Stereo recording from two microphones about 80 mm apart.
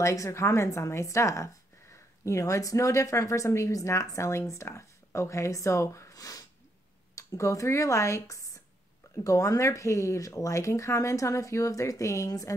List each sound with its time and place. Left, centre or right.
0.0 s a woman's voice: left